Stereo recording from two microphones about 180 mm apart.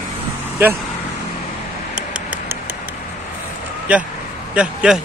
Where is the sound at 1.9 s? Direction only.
5° right (ahead or behind).